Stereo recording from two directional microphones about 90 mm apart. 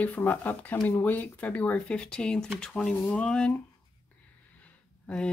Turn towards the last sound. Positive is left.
turn(degrees=10)  # may be behind; listen again after turning